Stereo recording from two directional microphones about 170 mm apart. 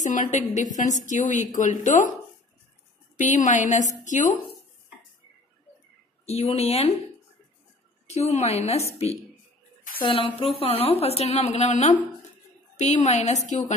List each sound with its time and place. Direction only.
0.0 s a woman's voice: 45° left (ahead or behind)
3.2 s a woman's voice: 45° left (ahead or behind)
6.2 s a woman's voice: 40° left (ahead or behind)
8.1 s a woman's voice: 40° left (ahead or behind)
10.0 s a woman's voice: 30° left (ahead or behind)